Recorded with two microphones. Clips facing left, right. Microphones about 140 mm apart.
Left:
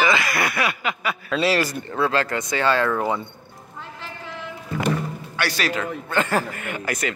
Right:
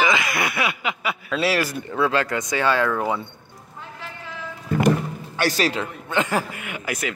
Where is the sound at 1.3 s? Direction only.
5° right (ahead or behind).